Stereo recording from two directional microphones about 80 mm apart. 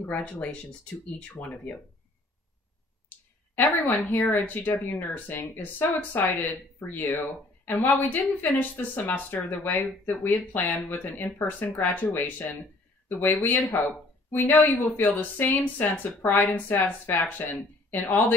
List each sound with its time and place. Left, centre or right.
0.0 s speech: centre
3.5 s a woman's voice: left
16.2 s speech: left
16.5 s a woman's voice: left